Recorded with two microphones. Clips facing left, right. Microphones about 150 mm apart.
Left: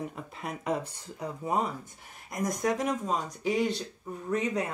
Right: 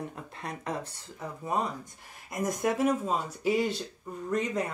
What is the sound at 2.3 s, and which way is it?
Speech, 5° right (ahead or behind).